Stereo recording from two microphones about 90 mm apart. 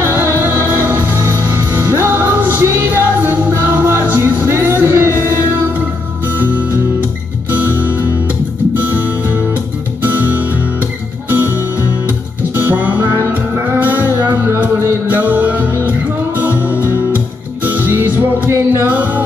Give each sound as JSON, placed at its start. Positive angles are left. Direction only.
{"t": 0.0, "sound": "music", "side_deg": -25}
{"t": 8.7, "sound": "music", "side_deg": -20}
{"t": 10.1, "sound": "music", "side_deg": -20}
{"t": 12.5, "sound": "music", "side_deg": -20}
{"t": 16.7, "sound": "music", "side_deg": 30}
{"t": 17.8, "sound": "music", "side_deg": -20}